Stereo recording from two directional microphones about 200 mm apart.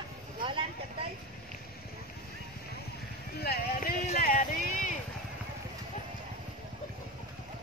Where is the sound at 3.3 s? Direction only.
50° left (ahead or behind).